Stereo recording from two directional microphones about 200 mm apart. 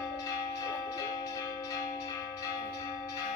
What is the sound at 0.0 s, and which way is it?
Church bell, 15° left (ahead or behind).